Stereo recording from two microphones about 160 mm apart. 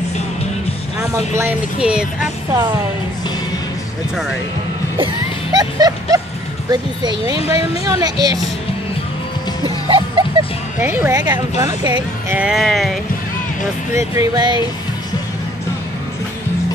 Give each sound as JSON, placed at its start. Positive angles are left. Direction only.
{"t": 0.9, "sound": "music", "side_deg": -20}
{"t": 1.4, "sound": "speech", "side_deg": -10}
{"t": 4.9, "sound": "music", "side_deg": -30}
{"t": 6.7, "sound": "a woman's voice", "side_deg": -25}
{"t": 9.8, "sound": "a sound", "side_deg": -30}
{"t": 10.8, "sound": "a woman's voice", "side_deg": -15}
{"t": 12.3, "sound": "speech", "side_deg": -5}
{"t": 13.9, "sound": "a woman's voice", "side_deg": -25}